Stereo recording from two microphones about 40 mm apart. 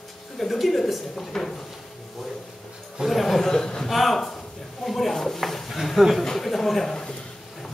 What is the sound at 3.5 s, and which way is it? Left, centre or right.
Speech, centre.